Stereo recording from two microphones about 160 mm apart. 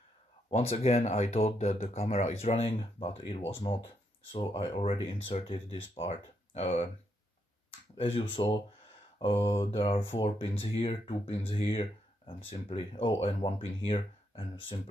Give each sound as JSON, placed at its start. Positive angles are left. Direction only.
{"t": 0.5, "sound": "speech", "side_deg": 40}
{"t": 8.0, "sound": "speech", "side_deg": 35}